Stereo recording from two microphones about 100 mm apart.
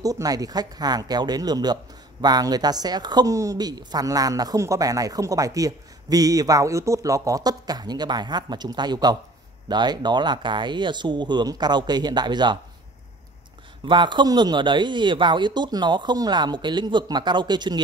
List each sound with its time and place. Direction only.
0.0 s a woman's voice: 35° right (ahead or behind)
13.8 s speech: 50° right (ahead or behind)